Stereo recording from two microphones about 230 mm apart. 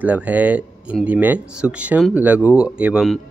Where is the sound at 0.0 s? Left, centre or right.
Centre.